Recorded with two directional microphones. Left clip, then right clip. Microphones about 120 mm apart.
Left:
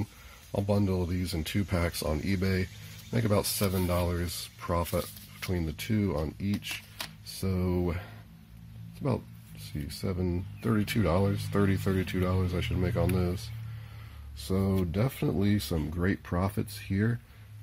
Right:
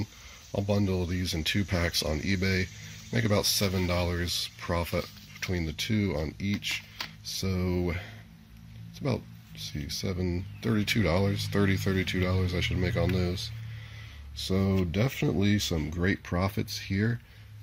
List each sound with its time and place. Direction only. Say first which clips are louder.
0.5 s speech: even; 5° right (ahead or behind)
9.9 s speech: even; centre (ahead or behind)
14.5 s speech: right 1 dB; 25° right (ahead or behind)
16.9 s speech: even; centre (ahead or behind)